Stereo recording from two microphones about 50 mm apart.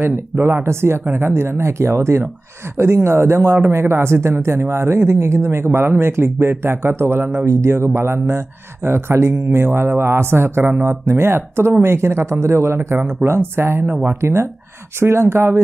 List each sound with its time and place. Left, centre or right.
0.0 s speech: right
1.0 s speech: right
7.4 s speech: right